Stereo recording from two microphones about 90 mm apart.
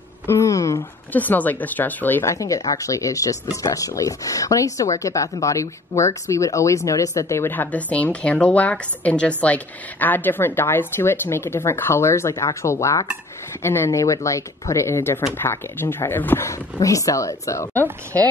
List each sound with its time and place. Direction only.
0.3 s a sound: 35° left (ahead or behind)
1.1 s speech: 20° left (ahead or behind)
2.2 s speech: 40° left (ahead or behind)
16.4 s speech: 35° left (ahead or behind)